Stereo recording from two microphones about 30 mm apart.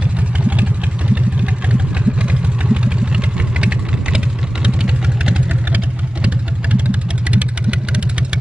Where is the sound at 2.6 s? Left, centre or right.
Right.